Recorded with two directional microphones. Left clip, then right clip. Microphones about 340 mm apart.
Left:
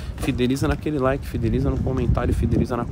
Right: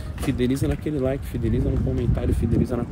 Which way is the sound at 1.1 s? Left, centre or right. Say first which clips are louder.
Left 3 dB; centre.